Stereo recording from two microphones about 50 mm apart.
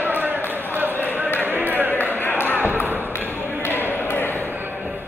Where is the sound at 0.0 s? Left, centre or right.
Right.